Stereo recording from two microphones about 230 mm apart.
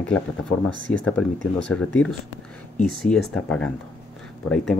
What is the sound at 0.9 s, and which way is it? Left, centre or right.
Speech, centre.